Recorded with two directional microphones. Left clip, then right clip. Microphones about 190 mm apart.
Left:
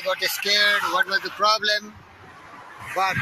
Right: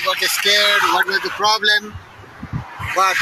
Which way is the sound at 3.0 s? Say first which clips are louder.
Right 7 dB; 25° left (ahead or behind).